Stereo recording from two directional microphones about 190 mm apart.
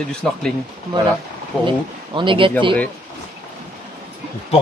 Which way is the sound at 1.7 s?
25° right (ahead or behind).